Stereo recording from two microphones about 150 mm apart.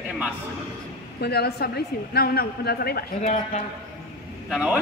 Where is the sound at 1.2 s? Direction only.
90° left.